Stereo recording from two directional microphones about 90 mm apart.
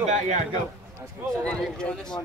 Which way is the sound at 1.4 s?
15° left (ahead or behind).